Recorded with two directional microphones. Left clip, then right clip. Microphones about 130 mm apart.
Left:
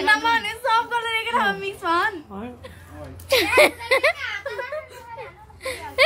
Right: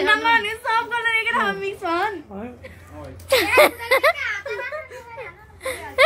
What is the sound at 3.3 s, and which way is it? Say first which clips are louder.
Speech: right 1 dB; 10° left (ahead or behind).